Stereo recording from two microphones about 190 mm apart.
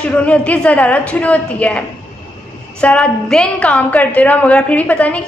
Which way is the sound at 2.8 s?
5° left (ahead or behind).